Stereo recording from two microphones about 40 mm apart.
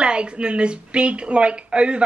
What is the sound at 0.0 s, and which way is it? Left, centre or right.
A woman's voice, right.